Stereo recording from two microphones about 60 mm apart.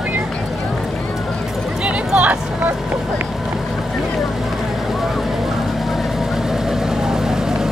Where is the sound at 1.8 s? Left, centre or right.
Right.